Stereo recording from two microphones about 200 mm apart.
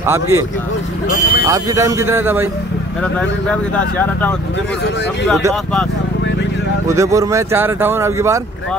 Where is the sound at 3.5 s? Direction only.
5° left (ahead or behind).